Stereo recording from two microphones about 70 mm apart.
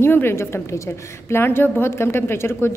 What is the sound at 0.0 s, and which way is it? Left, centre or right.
A woman's voice, left.